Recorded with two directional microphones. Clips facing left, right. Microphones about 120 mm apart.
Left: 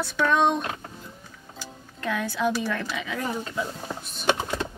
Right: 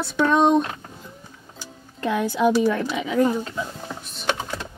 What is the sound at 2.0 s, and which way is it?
Speech, 20° right (ahead or behind).